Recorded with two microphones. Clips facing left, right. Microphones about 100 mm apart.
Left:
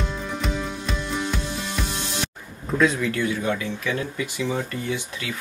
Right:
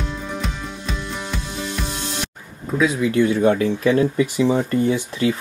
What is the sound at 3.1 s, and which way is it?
Speech, 20° right (ahead or behind).